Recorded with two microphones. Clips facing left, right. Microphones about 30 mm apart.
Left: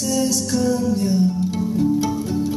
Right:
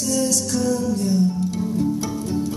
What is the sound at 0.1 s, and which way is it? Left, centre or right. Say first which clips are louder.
Music: left 1 dB; centre.